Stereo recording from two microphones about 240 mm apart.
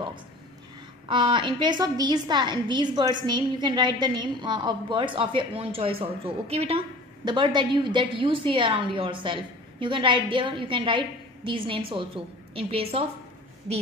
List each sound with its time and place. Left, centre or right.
1.0 s a woman's voice: centre
13.7 s a woman's voice: right